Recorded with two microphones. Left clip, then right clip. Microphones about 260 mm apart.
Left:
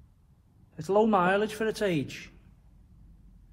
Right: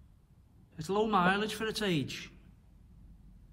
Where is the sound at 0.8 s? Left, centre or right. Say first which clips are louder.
Left 5 dB; centre.